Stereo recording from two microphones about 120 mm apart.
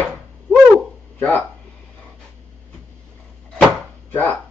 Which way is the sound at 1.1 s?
15° left (ahead or behind).